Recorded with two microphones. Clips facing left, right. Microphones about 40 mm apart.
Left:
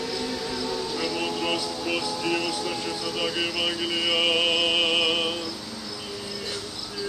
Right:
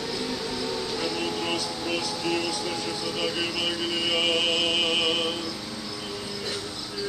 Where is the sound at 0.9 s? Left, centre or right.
Centre.